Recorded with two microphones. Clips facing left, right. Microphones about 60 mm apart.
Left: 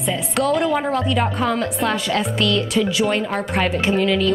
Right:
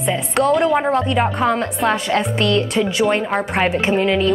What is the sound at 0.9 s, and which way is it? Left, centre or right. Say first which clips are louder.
Speech: right 3 dB; centre.